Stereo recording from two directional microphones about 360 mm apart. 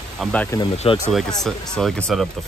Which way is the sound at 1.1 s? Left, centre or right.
Centre.